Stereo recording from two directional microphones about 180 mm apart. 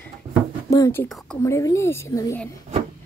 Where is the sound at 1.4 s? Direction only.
15° left (ahead or behind).